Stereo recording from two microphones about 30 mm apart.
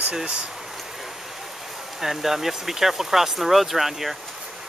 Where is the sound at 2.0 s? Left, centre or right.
Centre.